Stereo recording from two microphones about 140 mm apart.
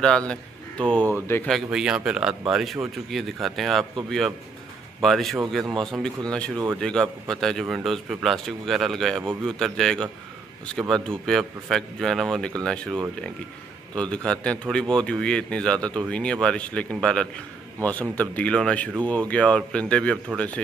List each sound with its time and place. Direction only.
0.0 s a man's voice: 5° left (ahead or behind)
1.5 s a man's voice: 5° right (ahead or behind)
5.0 s a man's voice: centre (ahead or behind)